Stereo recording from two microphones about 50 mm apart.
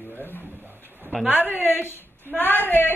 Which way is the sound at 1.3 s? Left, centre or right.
Left.